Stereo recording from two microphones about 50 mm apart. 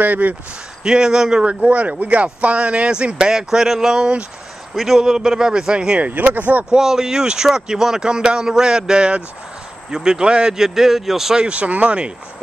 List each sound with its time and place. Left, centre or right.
0.0 s speech: right
0.8 s speech: centre; by 6.6 s right
6.7 s speech: centre
11.4 s speech: right